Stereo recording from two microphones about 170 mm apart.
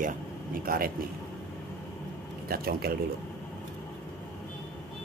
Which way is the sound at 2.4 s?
60° right (ahead or behind).